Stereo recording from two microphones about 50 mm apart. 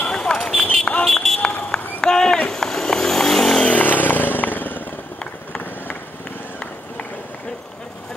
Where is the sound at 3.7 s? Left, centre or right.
Left.